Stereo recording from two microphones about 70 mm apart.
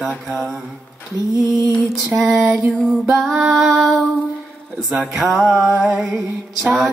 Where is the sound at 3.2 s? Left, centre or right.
Centre.